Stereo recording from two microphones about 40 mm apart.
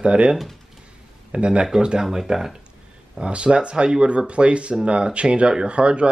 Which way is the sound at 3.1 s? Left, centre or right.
Right.